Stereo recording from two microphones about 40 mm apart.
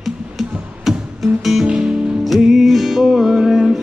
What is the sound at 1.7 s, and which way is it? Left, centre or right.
Music, right.